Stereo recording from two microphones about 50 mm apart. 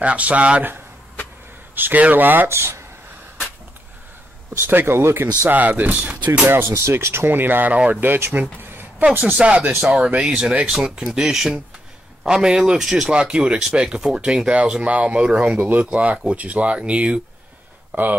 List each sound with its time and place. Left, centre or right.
0.0 s speech: right
1.8 s speech: right
2.4 s speech: right
4.6 s speech: right
5.5 s speech: right
6.6 s speech: right
7.7 s speech: right
8.0 s speech: right
8.4 s a sound: right
9.3 s speech: right; by 13.1 s centre
13.1 s speech: centre